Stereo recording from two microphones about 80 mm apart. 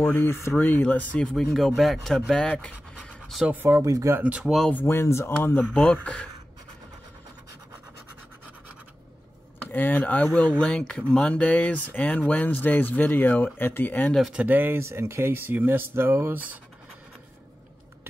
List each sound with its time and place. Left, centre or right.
0.1 s speech: left
1.5 s speech: centre
3.6 s speech: right
4.2 s speech: centre
4.8 s speech: left
5.7 s speech: centre
9.7 s speech: left
14.3 s speech: centre